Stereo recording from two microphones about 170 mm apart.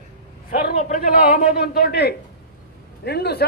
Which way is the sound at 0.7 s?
50° left (ahead or behind).